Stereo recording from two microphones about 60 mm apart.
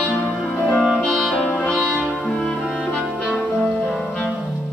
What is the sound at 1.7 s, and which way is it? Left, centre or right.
Music, right.